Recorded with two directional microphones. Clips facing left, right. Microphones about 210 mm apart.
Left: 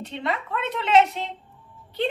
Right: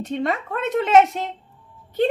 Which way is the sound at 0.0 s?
45° right (ahead or behind).